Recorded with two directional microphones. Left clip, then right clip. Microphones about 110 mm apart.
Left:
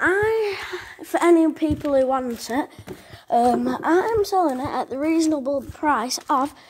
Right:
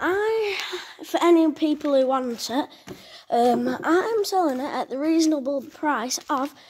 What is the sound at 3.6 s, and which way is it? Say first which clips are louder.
A woman's voice: left 2 dB; 5° right (ahead or behind).